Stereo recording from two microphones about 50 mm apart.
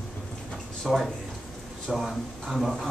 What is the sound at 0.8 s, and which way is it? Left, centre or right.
A man's voice, centre.